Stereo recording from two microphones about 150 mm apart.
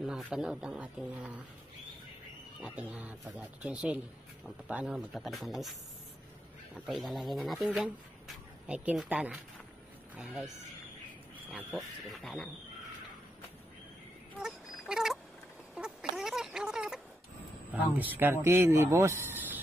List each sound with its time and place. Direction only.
0.0 s speech: 5° right (ahead or behind)
2.6 s speech: 10° right (ahead or behind)
6.7 s speech: centre (ahead or behind)
11.5 s speech: centre (ahead or behind)
14.4 s a sound: 5° right (ahead or behind)
17.9 s speech: 10° right (ahead or behind)